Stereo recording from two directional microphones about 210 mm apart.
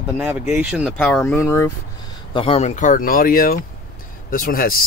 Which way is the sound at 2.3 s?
25° left (ahead or behind).